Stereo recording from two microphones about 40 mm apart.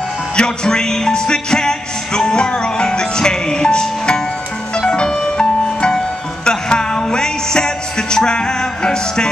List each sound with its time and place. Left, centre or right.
0.4 s music: centre